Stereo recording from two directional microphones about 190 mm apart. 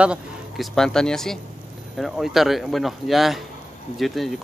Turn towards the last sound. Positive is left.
turn(degrees=0)  # may be behind; listen again after turning